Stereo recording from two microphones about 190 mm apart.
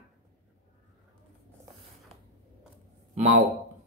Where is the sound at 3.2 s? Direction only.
35° right (ahead or behind).